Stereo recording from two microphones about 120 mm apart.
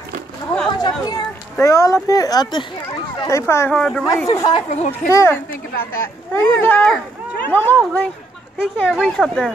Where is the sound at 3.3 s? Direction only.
25° left (ahead or behind).